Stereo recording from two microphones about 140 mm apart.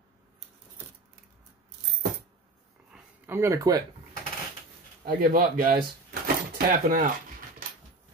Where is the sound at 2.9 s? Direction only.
15° right (ahead or behind).